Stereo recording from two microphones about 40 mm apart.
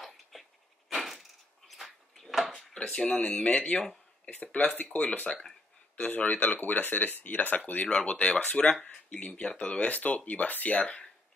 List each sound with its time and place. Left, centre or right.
0.0 s a sound: centre
2.7 s speech: centre; by 7.9 s left
7.9 s speech: left
9.8 s speech: left